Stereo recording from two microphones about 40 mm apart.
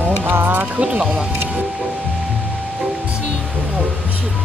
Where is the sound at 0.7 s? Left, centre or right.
Right.